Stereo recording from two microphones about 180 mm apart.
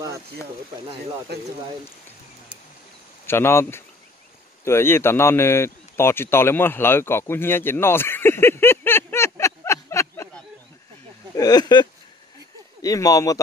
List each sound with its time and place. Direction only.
3.3 s speech: 15° left (ahead or behind)
4.6 s a sound: 15° left (ahead or behind)
11.3 s speech: 20° left (ahead or behind)